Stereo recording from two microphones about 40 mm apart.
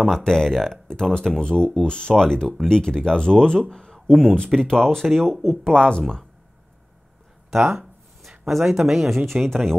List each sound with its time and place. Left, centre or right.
0.2 s speech: centre
2.4 s speech: centre
2.7 s speech: centre
8.3 s speech: centre